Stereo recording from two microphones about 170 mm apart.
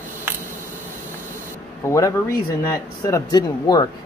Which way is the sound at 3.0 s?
20° left (ahead or behind).